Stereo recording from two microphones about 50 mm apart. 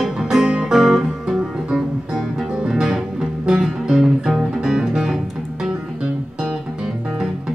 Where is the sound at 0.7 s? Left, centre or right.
Centre.